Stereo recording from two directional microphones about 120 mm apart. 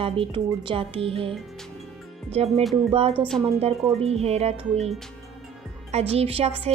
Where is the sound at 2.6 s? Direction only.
Centre (ahead or behind).